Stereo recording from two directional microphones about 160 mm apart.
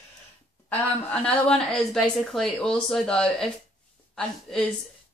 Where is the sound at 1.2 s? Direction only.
5° left (ahead or behind).